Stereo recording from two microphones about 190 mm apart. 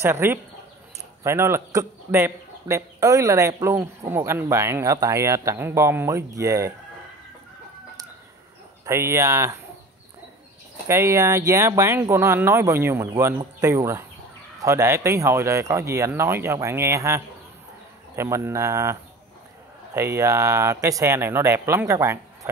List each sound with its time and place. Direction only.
0.0 s speech: 15° right (ahead or behind)
8.8 s speech: 15° right (ahead or behind)
10.9 s speech: 15° right (ahead or behind)